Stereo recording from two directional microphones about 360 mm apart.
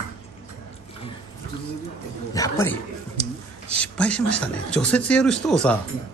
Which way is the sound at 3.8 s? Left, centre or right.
Centre.